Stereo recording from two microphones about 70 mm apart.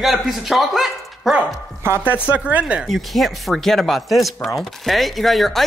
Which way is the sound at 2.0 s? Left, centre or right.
Right.